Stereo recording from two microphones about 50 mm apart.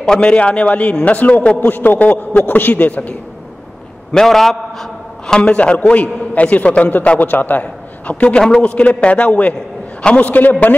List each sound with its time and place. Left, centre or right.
0.0 s a man's voice: centre
4.1 s a man's voice: centre
5.2 s a man's voice: centre